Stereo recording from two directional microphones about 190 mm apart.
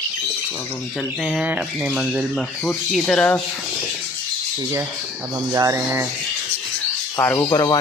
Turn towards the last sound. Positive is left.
turn(degrees=20)  # may be behind; listen again after turning